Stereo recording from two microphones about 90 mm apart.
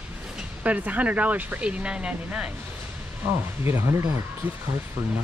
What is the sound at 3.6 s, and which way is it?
Speech, 30° right (ahead or behind).